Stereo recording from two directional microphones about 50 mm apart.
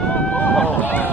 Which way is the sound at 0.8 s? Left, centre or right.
Left.